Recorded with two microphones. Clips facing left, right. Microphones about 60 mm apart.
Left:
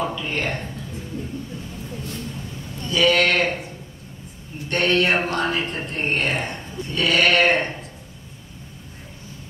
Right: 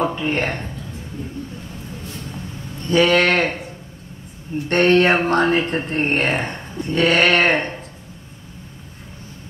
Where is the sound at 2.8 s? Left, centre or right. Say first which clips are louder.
Right 3 dB; right.